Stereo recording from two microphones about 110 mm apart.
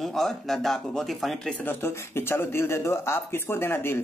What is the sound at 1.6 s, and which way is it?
Speech, 20° left (ahead or behind).